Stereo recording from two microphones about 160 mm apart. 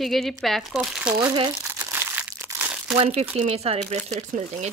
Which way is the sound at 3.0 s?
40° right (ahead or behind).